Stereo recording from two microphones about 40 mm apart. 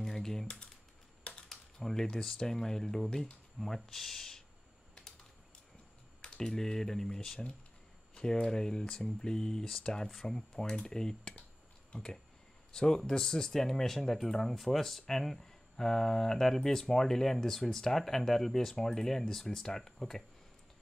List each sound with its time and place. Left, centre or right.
0.0 s typing: centre
1.5 s speech: centre
6.2 s speech: centre